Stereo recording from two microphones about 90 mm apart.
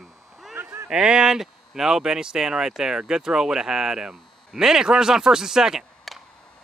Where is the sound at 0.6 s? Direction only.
25° right (ahead or behind).